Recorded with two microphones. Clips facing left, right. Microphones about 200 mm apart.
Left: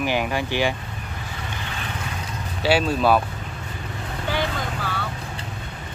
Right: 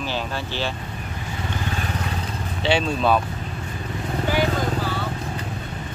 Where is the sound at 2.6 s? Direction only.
5° left (ahead or behind).